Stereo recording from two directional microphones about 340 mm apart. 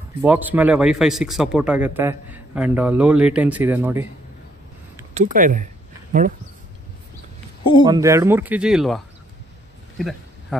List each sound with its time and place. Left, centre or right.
0.2 s a man's voice: centre
5.1 s speech: right
7.8 s a man's voice: centre
9.9 s a sound: centre